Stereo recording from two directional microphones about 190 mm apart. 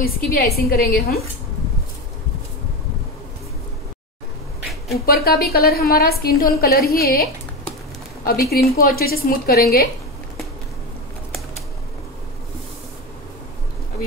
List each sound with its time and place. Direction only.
0.0 s a woman's voice: 50° left (ahead or behind)
4.6 s a sound: centre (ahead or behind)
4.9 s a woman's voice: 55° left (ahead or behind)
8.3 s a woman's voice: 55° left (ahead or behind)